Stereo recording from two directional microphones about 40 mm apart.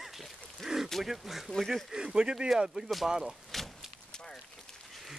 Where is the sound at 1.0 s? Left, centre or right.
Centre.